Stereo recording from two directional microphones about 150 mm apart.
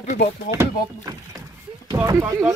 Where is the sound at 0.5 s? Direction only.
20° right (ahead or behind).